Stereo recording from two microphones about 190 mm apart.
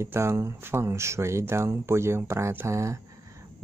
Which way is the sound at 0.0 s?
15° right (ahead or behind).